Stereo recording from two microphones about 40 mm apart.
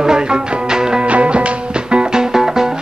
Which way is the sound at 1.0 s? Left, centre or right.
Right.